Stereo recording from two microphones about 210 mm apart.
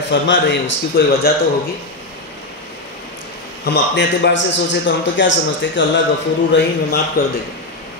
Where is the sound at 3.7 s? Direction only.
55° left (ahead or behind).